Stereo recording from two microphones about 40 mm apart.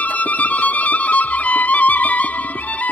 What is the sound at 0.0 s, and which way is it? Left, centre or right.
Music, left.